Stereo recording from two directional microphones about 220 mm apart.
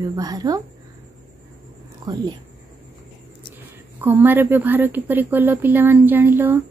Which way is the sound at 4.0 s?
10° right (ahead or behind).